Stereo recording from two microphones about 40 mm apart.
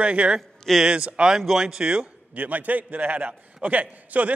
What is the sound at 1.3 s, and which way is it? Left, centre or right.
Speech, centre.